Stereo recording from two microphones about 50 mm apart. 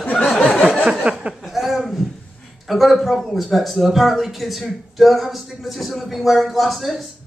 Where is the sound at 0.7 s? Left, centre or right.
Centre.